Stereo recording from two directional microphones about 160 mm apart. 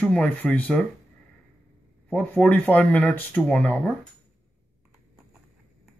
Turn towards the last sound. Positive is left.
turn(degrees=10)  # may be behind; listen again after turning